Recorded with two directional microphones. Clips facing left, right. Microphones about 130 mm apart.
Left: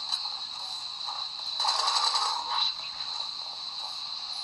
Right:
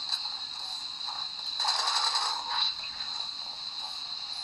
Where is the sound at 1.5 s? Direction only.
25° left (ahead or behind).